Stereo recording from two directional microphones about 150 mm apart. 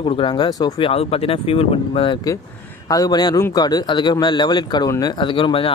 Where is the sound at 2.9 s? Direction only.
25° left (ahead or behind).